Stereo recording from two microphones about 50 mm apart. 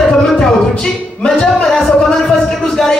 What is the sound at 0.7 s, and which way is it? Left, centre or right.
Speech, centre.